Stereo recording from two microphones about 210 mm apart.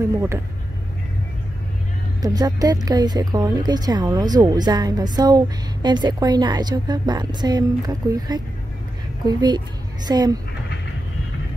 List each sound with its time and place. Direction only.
2.2 s a woman's voice: 15° right (ahead or behind)